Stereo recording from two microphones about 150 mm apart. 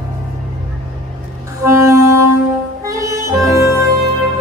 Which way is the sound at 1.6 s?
20° right (ahead or behind).